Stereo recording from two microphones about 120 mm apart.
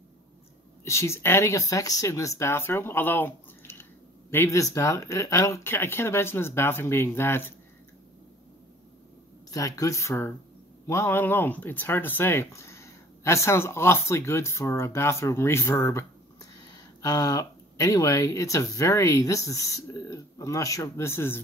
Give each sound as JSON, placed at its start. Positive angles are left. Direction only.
{"t": 0.8, "sound": "speech", "side_deg": 25}
{"t": 9.5, "sound": "speech", "side_deg": 30}